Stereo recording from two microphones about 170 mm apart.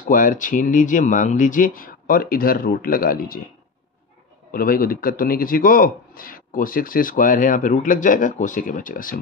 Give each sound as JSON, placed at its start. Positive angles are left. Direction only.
{"t": 0.1, "sound": "a man's voice", "side_deg": 50}
{"t": 4.5, "sound": "a man's voice", "side_deg": 55}